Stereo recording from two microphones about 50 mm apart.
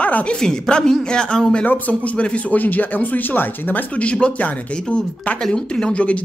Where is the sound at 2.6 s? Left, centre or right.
Left.